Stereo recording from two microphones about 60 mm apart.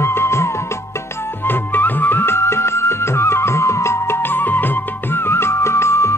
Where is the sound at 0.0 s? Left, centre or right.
Left.